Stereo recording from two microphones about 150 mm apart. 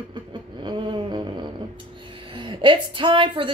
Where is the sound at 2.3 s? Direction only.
35° right (ahead or behind).